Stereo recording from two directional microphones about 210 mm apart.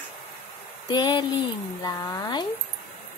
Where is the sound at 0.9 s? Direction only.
20° left (ahead or behind).